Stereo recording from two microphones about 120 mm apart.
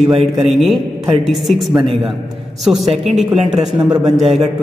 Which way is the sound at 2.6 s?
Centre (ahead or behind).